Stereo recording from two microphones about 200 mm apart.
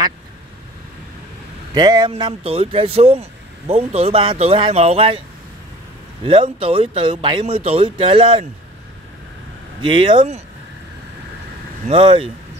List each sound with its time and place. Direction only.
1.7 s speech: 20° right (ahead or behind)
6.2 s speech: 25° right (ahead or behind)
9.8 s speech: 25° right (ahead or behind)
11.9 s speech: 25° right (ahead or behind)